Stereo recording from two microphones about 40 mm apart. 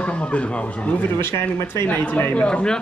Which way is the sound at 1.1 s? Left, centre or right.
Left.